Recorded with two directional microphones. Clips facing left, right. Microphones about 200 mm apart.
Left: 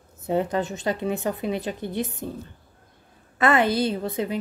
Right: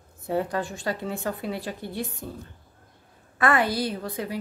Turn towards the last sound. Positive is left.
turn(degrees=25)  # may be behind; listen again after turning